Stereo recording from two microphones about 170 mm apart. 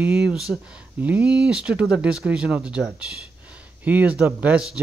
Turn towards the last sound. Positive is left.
turn(degrees=-5)  # may be behind; listen again after turning